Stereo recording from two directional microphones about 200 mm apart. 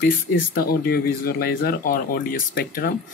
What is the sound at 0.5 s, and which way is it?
Speech, 50° left (ahead or behind).